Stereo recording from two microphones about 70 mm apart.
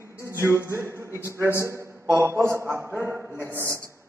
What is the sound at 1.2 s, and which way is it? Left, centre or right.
A man's voice, right.